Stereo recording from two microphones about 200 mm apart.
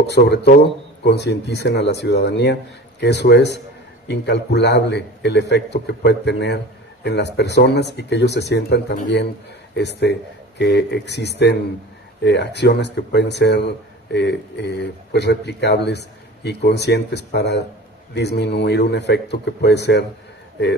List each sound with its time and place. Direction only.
0.0 s a man's voice: 60° left (ahead or behind)